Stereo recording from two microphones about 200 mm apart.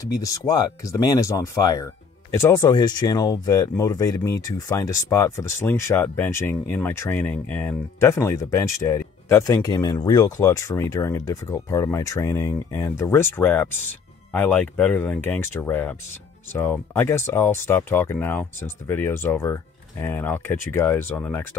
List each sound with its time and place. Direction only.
0.1 s speech: 15° left (ahead or behind)